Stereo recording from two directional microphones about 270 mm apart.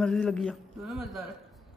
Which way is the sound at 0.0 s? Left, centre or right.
Centre.